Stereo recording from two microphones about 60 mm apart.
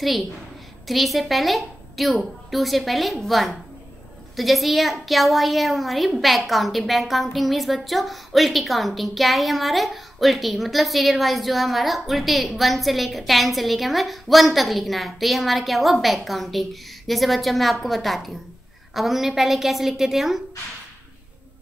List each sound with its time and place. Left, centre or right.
0.8 s a woman's voice: centre